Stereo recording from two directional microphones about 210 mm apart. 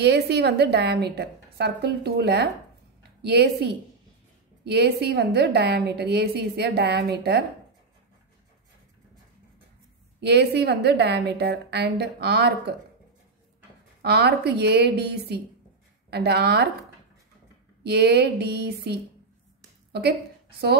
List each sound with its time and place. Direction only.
0.0 s a woman's voice: 50° right (ahead or behind)
10.2 s a woman's voice: 50° right (ahead or behind)
14.0 s a woman's voice: 50° right (ahead or behind)
17.8 s a woman's voice: 50° right (ahead or behind)